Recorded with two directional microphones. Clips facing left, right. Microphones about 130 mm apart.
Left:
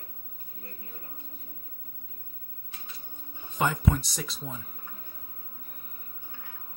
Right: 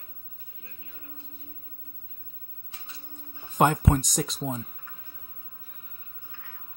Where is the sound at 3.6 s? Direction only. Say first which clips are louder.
Right 5 dB; 50° right (ahead or behind).